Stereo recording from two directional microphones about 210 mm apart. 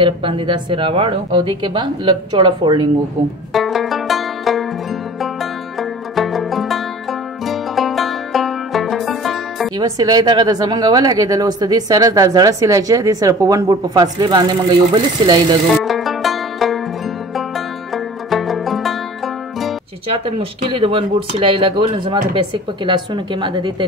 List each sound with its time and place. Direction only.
0.0 s speech: 25° right (ahead or behind)
3.5 s music: centre (ahead or behind)
9.8 s a woman's voice: 15° right (ahead or behind)
15.7 s music: centre (ahead or behind)
20.2 s speech: 25° right (ahead or behind)